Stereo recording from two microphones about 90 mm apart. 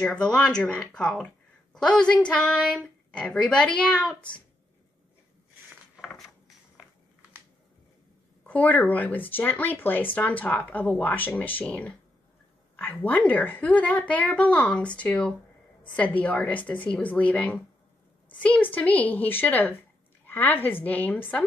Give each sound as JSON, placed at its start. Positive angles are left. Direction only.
{"t": 0.0, "sound": "speech", "side_deg": 10}
{"t": 6.0, "sound": "a sound", "side_deg": 0}
{"t": 8.5, "sound": "speech", "side_deg": 20}